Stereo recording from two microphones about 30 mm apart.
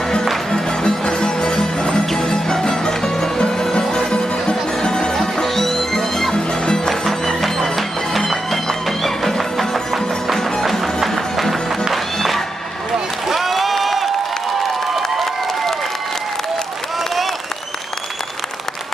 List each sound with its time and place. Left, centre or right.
0.5 s music: left
4.8 s music: left
5.1 s music: centre
13.3 s a sound: centre
15.0 s applause: centre